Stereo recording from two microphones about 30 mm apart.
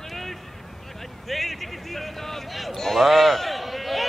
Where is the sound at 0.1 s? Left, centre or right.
Centre.